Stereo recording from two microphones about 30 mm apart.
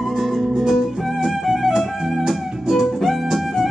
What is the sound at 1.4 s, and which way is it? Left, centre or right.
Music, centre.